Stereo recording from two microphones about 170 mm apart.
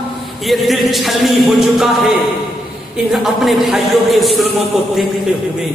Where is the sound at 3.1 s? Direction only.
Centre (ahead or behind).